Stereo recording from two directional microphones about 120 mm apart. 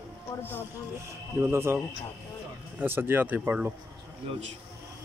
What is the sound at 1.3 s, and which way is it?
Speech, 20° right (ahead or behind).